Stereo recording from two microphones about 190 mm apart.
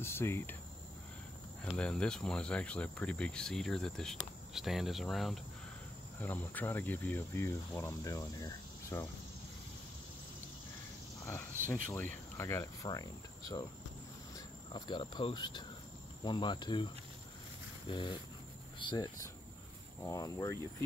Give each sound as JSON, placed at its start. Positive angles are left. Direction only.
{"t": 0.0, "sound": "speech", "side_deg": 10}
{"t": 1.8, "sound": "speech", "side_deg": 5}
{"t": 11.2, "sound": "speech", "side_deg": 10}
{"t": 14.3, "sound": "speech", "side_deg": 25}
{"t": 16.3, "sound": "cricket", "side_deg": 25}
{"t": 18.8, "sound": "speech", "side_deg": 20}